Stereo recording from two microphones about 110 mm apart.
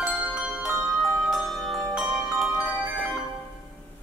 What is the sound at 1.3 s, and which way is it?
Music, centre (ahead or behind).